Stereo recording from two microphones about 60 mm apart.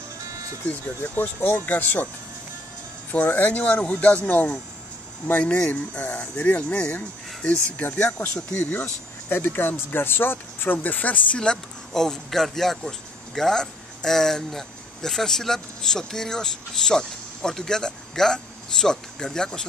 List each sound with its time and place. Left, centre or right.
0.7 s speech: left
3.1 s speech: left
8.8 s speech: left; by 19.6 s centre